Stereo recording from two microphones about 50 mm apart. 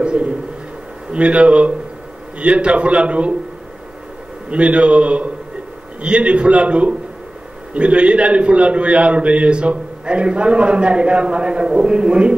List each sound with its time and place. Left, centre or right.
0.0 s a sound: right
1.1 s a man's voice: right
4.5 s a man's voice: right